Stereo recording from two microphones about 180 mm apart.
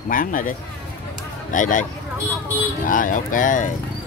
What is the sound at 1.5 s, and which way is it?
Speech, 45° left (ahead or behind).